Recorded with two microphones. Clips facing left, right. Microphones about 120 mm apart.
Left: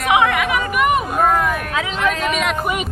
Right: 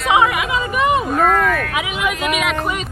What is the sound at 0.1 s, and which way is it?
Chatter, 20° right (ahead or behind).